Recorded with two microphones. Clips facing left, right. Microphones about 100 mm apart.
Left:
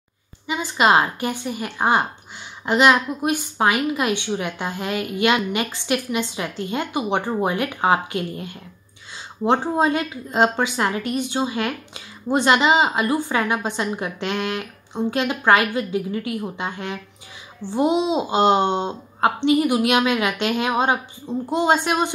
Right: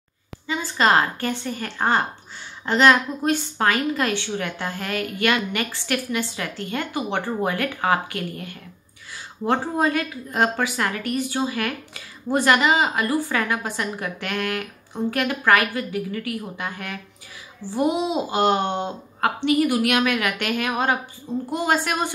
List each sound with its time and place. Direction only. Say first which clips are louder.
0.5 s a woman's voice: left 2 dB; 15° left (ahead or behind)